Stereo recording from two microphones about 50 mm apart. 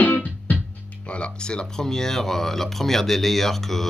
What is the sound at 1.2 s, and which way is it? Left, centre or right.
Speech, centre.